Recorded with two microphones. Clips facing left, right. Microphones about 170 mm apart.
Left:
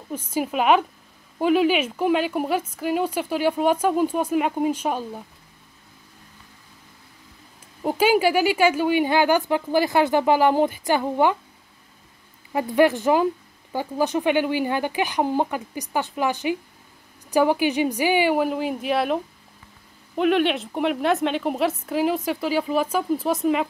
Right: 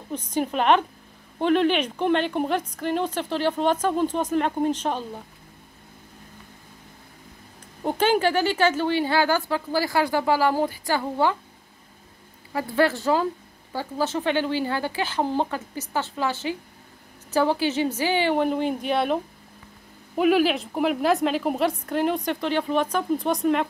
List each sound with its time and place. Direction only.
0.1 s speech: 5° left (ahead or behind)
7.8 s speech: 5° left (ahead or behind)
12.5 s a woman's voice: 15° left (ahead or behind)